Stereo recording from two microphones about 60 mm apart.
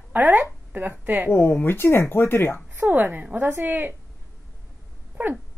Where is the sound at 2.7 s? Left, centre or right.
Right.